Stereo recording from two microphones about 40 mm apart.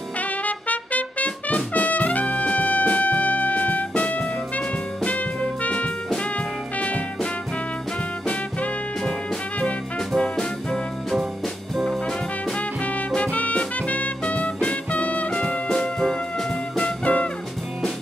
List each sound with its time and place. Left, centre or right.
0.5 s trumpet: left
5.0 s music: left
10.1 s music: centre
11.7 s brass instrument: centre
13.1 s music: left
15.3 s music: centre
16.7 s music: left